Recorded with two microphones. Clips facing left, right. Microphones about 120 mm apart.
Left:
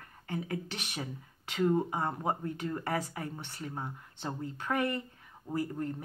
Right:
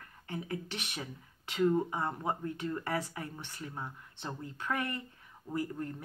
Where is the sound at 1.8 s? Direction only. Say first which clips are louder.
Left 2 dB; 30° left (ahead or behind).